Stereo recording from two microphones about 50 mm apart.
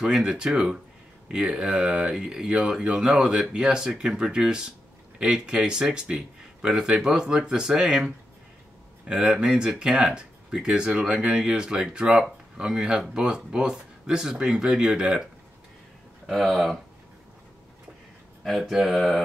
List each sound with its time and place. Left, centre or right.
0.0 s speech: centre
16.3 s speech: centre
18.4 s speech: centre